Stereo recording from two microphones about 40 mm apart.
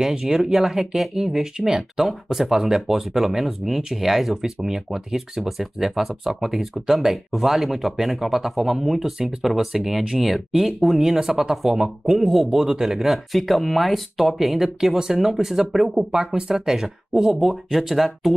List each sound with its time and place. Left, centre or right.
0.0 s speech: centre